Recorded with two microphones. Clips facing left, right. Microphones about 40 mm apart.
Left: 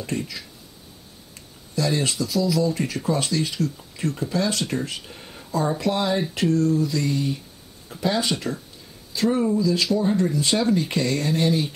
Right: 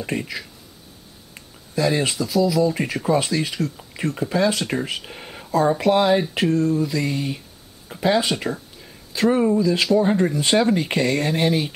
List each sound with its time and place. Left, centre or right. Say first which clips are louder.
0.0 s speech: right 2 dB; right
5.0 s a sound: right 4 dB; right
5.5 s speech: right 6 dB; centre